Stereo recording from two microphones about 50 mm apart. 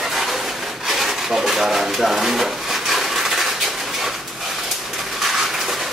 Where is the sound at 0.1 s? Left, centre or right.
Centre.